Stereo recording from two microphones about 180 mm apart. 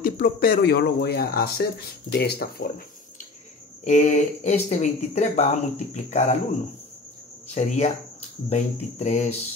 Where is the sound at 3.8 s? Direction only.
40° left (ahead or behind).